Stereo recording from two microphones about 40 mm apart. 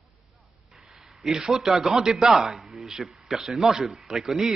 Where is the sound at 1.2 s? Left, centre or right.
Centre.